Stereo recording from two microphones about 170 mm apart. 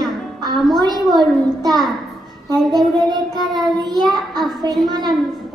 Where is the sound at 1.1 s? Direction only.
25° right (ahead or behind).